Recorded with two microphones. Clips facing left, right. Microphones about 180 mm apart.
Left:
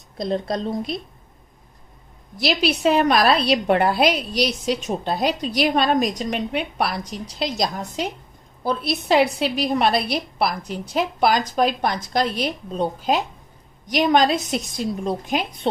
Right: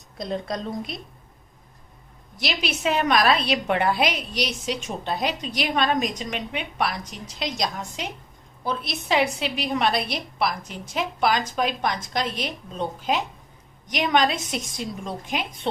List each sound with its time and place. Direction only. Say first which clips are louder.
0.2 s a woman's voice: left 5 dB; 30° left (ahead or behind)
2.3 s a woman's voice: left 7 dB; 35° left (ahead or behind)